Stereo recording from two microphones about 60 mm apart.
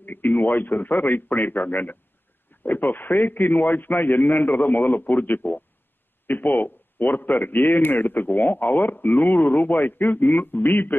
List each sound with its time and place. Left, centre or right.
0.0 s a man's voice: left